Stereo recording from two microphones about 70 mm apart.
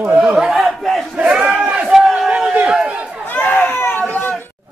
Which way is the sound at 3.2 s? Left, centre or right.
Left.